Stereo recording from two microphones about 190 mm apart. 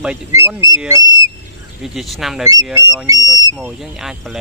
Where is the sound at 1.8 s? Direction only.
Centre (ahead or behind).